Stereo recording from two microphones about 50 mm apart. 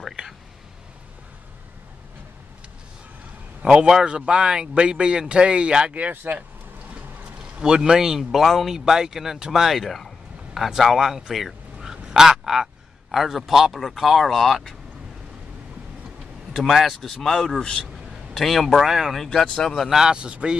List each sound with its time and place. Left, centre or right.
3.6 s speech: centre
5.9 s speech: right
7.5 s speech: centre
16.5 s speech: centre
17.6 s a man's voice: centre
18.3 s speech: centre
19.1 s speech: centre
19.9 s speech: centre
20.2 s speech: centre